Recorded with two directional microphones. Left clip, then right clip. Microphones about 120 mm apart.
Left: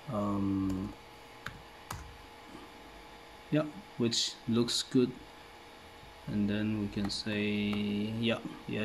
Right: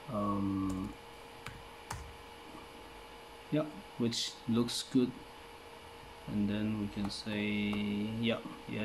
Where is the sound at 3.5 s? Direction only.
35° left (ahead or behind).